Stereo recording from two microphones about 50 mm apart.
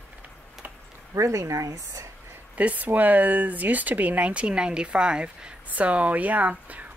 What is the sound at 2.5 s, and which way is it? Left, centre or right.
Speech, right.